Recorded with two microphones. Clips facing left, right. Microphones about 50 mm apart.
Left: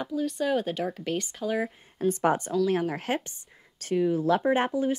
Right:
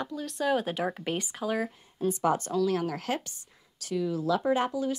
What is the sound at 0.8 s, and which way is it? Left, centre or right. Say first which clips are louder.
Speech: left 1 dB; centre.